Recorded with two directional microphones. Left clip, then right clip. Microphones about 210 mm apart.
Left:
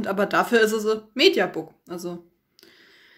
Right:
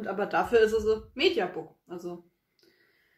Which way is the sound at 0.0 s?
50° left (ahead or behind).